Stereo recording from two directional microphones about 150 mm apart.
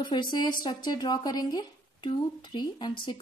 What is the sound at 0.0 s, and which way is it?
Speech, 30° left (ahead or behind).